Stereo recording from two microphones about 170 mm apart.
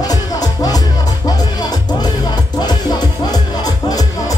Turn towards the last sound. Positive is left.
turn(degrees=20)  # may be behind; listen again after turning